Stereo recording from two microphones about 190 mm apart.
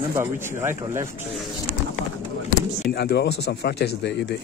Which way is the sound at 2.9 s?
60° left (ahead or behind).